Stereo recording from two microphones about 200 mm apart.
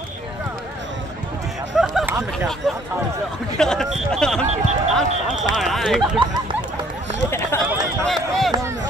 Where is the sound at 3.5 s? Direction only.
Centre (ahead or behind).